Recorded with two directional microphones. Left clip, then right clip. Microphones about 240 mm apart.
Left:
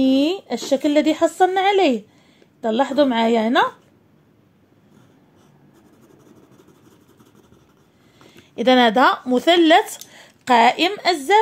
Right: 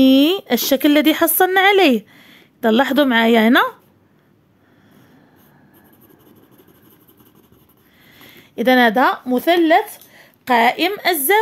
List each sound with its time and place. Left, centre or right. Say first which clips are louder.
0.0 s speech: right 5 dB; right
8.5 s speech: right 1 dB; centre